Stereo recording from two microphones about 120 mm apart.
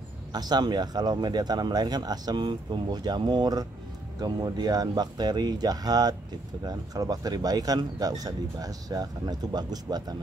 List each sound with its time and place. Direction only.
0.3 s speech: 35° right (ahead or behind)